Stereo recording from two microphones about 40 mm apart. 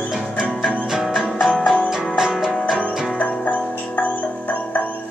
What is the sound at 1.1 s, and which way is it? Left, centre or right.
Music, centre.